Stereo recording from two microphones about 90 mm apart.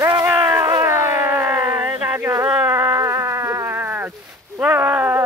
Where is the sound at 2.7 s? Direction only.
30° right (ahead or behind).